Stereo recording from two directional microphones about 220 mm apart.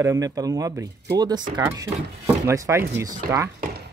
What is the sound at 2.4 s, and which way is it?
Speech, 15° right (ahead or behind).